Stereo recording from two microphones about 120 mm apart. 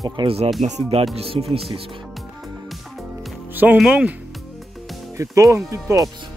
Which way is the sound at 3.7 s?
10° right (ahead or behind).